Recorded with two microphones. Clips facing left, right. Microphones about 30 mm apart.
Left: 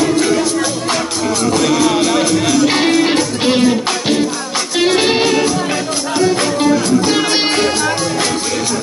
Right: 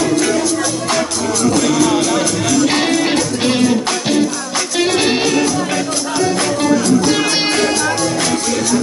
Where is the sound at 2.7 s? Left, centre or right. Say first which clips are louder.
Left 2 dB; centre.